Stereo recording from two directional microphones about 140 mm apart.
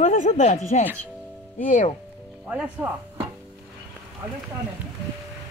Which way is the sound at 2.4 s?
10° right (ahead or behind).